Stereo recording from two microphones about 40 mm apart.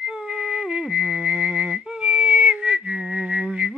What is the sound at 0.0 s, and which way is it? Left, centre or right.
Music, right.